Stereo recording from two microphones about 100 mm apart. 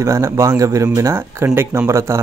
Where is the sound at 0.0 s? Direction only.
35° right (ahead or behind).